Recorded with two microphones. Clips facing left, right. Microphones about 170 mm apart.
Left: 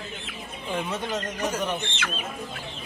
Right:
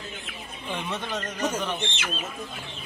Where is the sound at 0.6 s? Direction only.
5° left (ahead or behind).